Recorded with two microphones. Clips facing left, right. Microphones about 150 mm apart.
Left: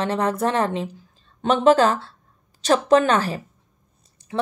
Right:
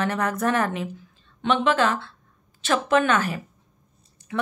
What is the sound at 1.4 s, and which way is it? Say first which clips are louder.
Speech: left 5 dB; 40° left (ahead or behind).